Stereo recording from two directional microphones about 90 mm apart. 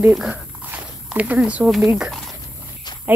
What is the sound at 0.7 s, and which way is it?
Dog, 20° right (ahead or behind).